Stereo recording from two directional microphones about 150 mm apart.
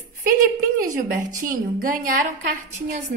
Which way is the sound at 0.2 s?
65° right (ahead or behind).